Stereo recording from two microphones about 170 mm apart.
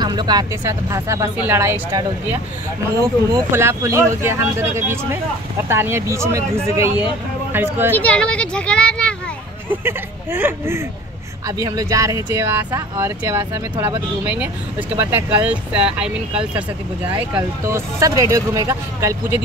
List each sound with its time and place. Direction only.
0.0 s speech: 25° right (ahead or behind)
3.3 s speech: 15° right (ahead or behind)
7.9 s speech: 10° left (ahead or behind)
9.7 s speech: 10° right (ahead or behind)
17.3 s speech: 15° right (ahead or behind)